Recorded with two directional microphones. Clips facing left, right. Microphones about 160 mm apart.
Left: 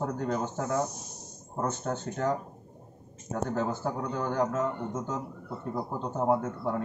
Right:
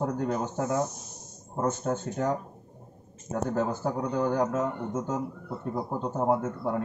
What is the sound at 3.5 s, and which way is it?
A man's voice, 10° right (ahead or behind).